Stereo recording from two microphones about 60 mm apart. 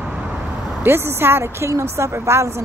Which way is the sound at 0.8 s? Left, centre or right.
Right.